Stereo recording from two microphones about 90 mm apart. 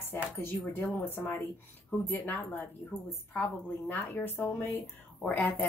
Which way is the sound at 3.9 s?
25° left (ahead or behind).